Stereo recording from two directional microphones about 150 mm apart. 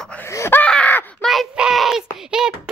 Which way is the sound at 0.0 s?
10° left (ahead or behind).